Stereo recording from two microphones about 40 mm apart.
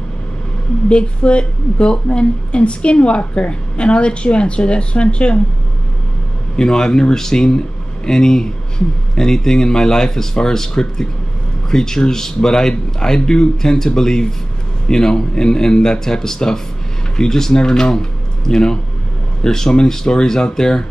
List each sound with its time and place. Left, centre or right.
0.8 s speech: left
6.5 s speech: centre